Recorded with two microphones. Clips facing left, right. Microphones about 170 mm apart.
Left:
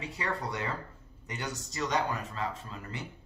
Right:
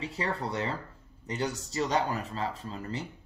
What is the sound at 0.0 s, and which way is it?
Speech, 30° right (ahead or behind).